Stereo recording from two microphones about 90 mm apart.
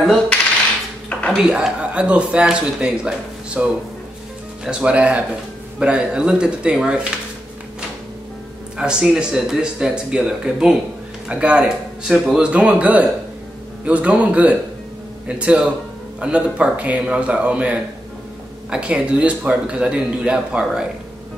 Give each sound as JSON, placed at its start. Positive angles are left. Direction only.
{"t": 1.3, "sound": "speech", "side_deg": -10}
{"t": 8.7, "sound": "speech", "side_deg": -10}